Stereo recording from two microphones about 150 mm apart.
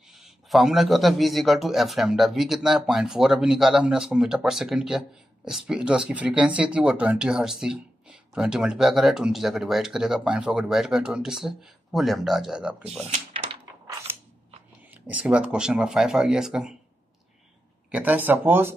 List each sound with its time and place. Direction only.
0.1 s a man's voice: centre (ahead or behind)
13.1 s door: 40° right (ahead or behind)
14.1 s scissors: 15° right (ahead or behind)
14.9 s a man's voice: 10° right (ahead or behind)
17.9 s speech: 10° right (ahead or behind)